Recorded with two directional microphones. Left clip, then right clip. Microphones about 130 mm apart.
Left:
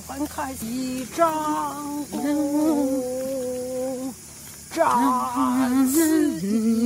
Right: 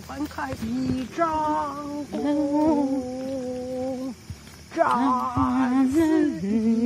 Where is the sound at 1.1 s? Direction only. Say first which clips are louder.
Left 3 dB; 35° left (ahead or behind).